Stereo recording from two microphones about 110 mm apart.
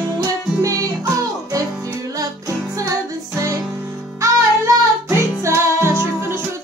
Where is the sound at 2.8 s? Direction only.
30° right (ahead or behind).